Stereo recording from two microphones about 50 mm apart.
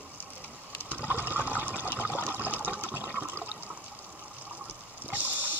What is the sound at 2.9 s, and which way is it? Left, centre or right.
Toilet flush, right.